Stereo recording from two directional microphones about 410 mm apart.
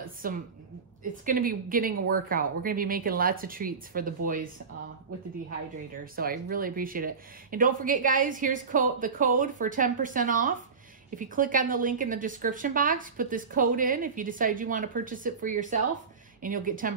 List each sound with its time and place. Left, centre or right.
0.2 s a woman's voice: centre
6.1 s a woman's voice: right